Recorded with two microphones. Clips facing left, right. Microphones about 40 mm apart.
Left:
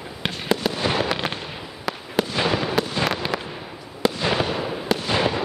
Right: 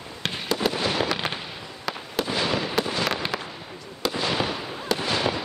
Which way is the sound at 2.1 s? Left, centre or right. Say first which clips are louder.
Left 3 dB; centre.